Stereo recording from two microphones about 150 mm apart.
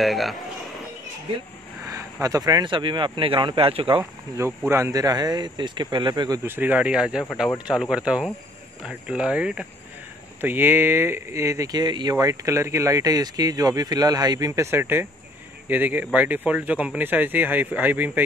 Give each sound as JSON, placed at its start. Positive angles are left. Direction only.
{"t": 0.0, "sound": "speech", "side_deg": 0}
{"t": 2.2, "sound": "speech", "side_deg": -25}
{"t": 4.0, "sound": "speech", "side_deg": -15}
{"t": 6.4, "sound": "speech", "side_deg": -15}